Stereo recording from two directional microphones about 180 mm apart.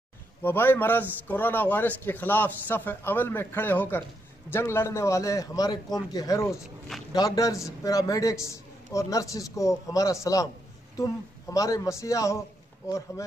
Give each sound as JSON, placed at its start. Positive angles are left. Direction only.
{"t": 0.4, "sound": "a man's voice", "side_deg": 10}